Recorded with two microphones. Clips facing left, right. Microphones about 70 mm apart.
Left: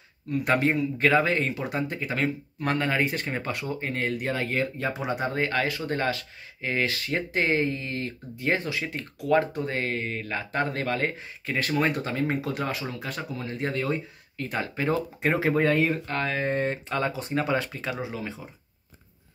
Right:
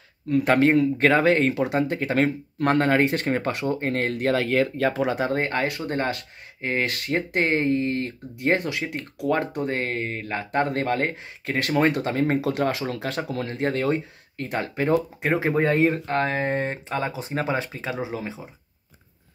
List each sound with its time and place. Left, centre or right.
0.6 s speech: right
5.3 s speech: right
8.5 s speech: right
9.3 s speech: right
12.6 s speech: right
13.5 s speech: right
15.0 s speech: centre
15.4 s speech: right